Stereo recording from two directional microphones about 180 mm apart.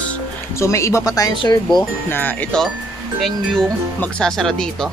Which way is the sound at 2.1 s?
10° left (ahead or behind).